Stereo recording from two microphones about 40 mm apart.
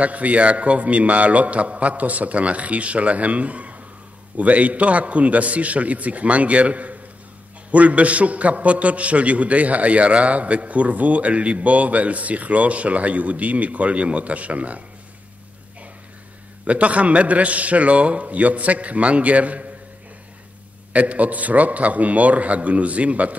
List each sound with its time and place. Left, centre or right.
0.0 s a man's voice: right
16.6 s a man's voice: right
20.9 s a man's voice: right